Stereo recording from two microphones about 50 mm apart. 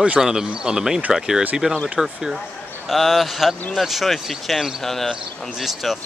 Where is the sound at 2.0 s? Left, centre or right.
Centre.